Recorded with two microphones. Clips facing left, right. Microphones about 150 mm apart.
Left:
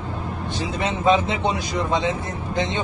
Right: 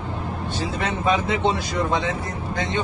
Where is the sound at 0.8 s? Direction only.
20° left (ahead or behind).